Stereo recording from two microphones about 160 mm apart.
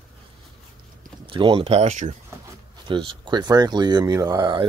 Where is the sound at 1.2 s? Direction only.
30° right (ahead or behind).